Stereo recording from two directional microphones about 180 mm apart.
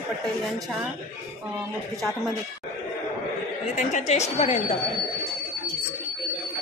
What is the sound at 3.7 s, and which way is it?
Speech, 40° left (ahead or behind).